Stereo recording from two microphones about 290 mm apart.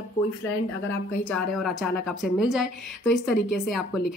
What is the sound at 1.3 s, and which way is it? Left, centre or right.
Speech, centre.